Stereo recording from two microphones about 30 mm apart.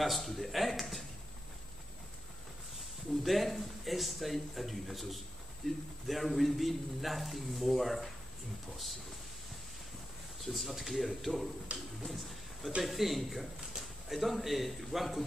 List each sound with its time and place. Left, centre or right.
0.0 s speech: centre
3.3 s a man's voice: centre
10.4 s a man's voice: centre
11.7 s a sound: right
12.1 s a man's voice: centre